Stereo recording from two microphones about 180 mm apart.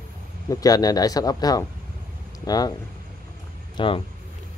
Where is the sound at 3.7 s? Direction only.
30° left (ahead or behind).